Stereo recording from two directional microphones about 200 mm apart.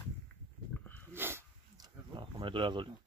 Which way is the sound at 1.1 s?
10° right (ahead or behind).